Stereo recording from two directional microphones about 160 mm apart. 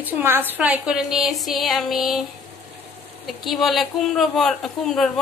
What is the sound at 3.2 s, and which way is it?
Speech, centre (ahead or behind).